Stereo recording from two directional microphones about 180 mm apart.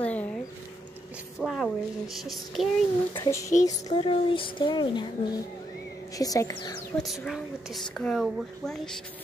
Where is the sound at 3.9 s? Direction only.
30° left (ahead or behind).